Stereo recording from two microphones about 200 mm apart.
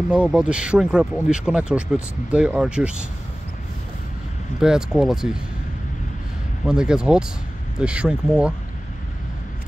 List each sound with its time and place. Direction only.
0.1 s speech: 5° right (ahead or behind)
4.6 s speech: 5° right (ahead or behind)
6.6 s speech: 5° right (ahead or behind)